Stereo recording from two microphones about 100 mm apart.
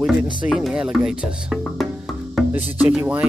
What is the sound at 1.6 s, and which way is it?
Music, centre (ahead or behind).